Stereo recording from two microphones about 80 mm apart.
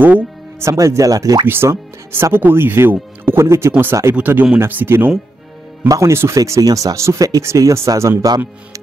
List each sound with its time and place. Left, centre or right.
0.0 s music: right
0.7 s speech: right
1.5 s speech: right
5.9 s speech: right